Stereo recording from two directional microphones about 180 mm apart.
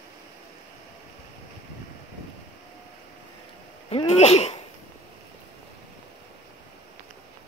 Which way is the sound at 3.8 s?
35° left (ahead or behind).